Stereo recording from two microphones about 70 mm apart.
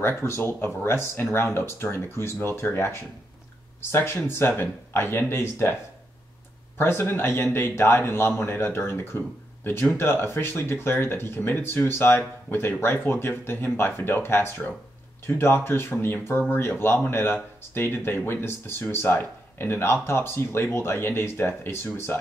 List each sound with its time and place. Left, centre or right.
0.0 s speech: left
6.8 s speech: left